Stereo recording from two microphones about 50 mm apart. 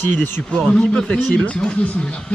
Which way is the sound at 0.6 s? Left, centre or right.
Left.